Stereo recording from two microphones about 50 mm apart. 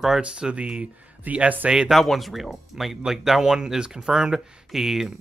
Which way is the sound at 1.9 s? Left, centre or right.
Centre.